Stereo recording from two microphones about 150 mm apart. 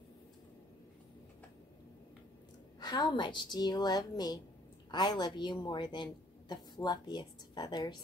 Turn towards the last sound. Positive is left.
turn(degrees=30)  # may be behind; listen again after turning